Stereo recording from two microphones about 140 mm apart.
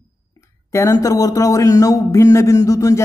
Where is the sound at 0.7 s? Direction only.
20° left (ahead or behind).